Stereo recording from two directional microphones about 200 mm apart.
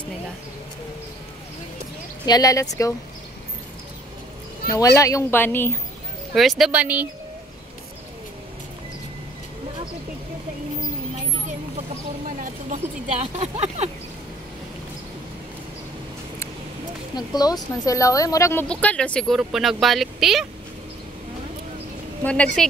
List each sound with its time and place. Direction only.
2.2 s speech: 20° left (ahead or behind)
4.7 s speech: 15° left (ahead or behind)
6.3 s speech: centre (ahead or behind)
11.4 s a sound: 40° right (ahead or behind)
13.2 s speech: 30° right (ahead or behind)
17.1 s speech: 20° left (ahead or behind); by 20.4 s centre (ahead or behind)
22.2 s speech: 5° left (ahead or behind)